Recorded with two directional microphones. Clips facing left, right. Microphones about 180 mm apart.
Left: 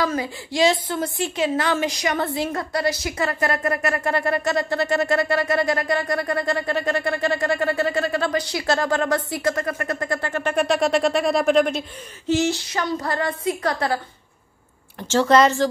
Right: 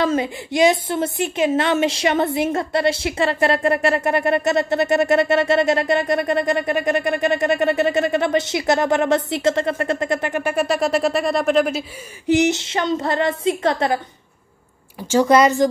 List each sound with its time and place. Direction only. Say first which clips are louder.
0.0 s a woman's voice: right 4 dB; 25° right (ahead or behind)
10.5 s speech: left 1 dB; 5° right (ahead or behind)
12.3 s a woman's voice: right 4 dB; 20° right (ahead or behind)
15.0 s speech: right 2 dB; 10° right (ahead or behind)